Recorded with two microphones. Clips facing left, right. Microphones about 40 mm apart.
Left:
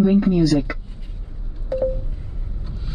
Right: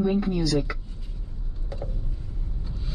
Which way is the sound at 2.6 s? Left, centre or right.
Centre.